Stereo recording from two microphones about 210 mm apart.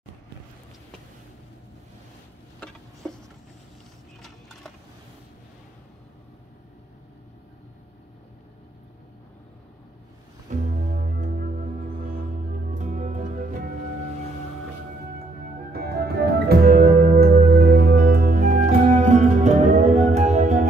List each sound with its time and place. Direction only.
4.2 s a sound: centre (ahead or behind)
10.7 s music: 35° right (ahead or behind)
15.7 s music: 50° right (ahead or behind)